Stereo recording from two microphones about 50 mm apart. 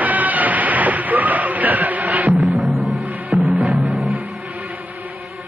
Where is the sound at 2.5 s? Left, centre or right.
Centre.